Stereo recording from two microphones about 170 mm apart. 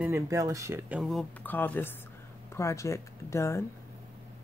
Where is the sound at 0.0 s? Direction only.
15° right (ahead or behind).